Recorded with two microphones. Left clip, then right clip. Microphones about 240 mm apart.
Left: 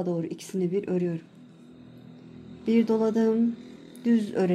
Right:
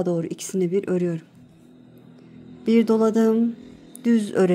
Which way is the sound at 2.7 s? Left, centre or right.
Right.